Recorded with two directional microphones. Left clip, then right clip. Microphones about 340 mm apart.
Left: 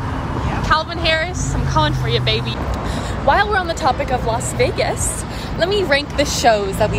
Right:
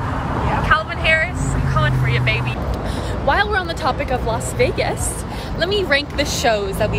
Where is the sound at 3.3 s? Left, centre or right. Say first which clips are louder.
Left 3 dB; centre.